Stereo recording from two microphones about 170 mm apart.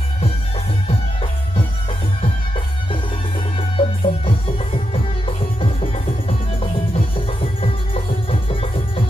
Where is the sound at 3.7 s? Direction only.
35° left (ahead or behind).